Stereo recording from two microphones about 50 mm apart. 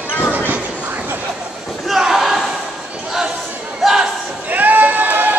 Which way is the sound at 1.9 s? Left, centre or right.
Centre.